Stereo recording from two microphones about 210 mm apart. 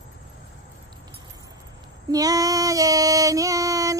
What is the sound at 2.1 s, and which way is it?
Child singing, 15° right (ahead or behind).